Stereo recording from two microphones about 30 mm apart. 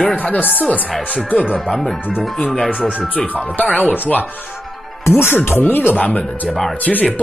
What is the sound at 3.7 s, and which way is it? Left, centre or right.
Speech, left.